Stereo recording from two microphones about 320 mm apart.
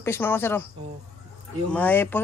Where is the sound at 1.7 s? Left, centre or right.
Centre.